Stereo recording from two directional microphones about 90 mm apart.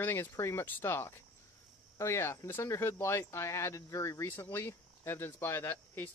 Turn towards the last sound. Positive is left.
turn(degrees=25)  # may be behind; listen again after turning